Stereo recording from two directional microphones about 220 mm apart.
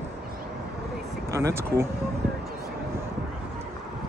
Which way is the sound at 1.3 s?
10° right (ahead or behind).